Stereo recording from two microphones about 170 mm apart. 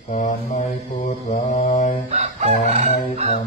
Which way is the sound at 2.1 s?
45° right (ahead or behind).